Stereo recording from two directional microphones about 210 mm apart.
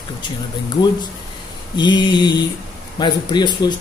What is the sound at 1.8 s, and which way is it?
Speech, 20° left (ahead or behind).